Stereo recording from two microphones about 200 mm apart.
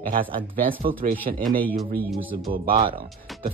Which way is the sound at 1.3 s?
35° right (ahead or behind).